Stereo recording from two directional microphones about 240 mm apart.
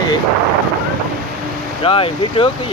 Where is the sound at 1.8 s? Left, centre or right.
Left.